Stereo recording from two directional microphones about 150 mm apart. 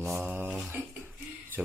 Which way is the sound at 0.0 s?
15° right (ahead or behind).